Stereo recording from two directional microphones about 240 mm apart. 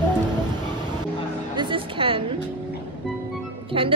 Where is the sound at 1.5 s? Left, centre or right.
Right.